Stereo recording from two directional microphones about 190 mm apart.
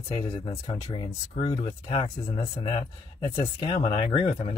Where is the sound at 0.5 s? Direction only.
15° left (ahead or behind).